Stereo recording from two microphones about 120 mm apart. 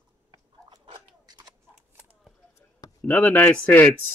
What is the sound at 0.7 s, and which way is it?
Crunch, 35° right (ahead or behind).